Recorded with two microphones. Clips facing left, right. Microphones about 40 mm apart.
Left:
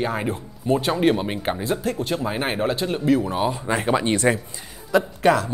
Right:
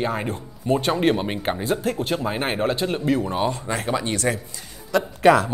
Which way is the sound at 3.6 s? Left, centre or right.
Centre.